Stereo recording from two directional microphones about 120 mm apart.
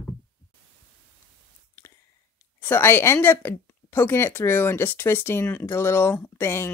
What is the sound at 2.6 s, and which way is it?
Speech, 20° left (ahead or behind).